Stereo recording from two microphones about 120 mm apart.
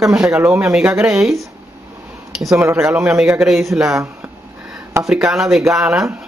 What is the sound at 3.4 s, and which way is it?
Speech, centre (ahead or behind).